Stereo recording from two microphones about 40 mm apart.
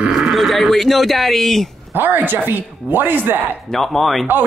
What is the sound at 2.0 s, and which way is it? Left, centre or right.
Speech, right.